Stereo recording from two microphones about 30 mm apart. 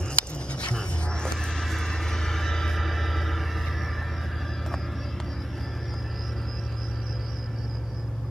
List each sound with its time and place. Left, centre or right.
0.1 s a sound: left
0.7 s music: left
1.7 s vehicle: centre
2.7 s music: centre